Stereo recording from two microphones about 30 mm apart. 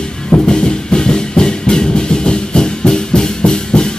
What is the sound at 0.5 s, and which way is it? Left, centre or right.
Music, left.